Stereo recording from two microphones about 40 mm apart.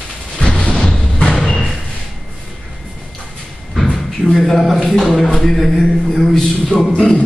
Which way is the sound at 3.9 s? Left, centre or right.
Centre.